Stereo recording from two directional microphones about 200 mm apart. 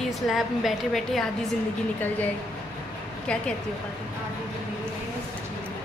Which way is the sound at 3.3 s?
5° left (ahead or behind).